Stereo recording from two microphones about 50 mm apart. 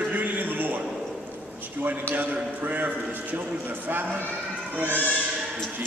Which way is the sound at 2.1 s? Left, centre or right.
Right.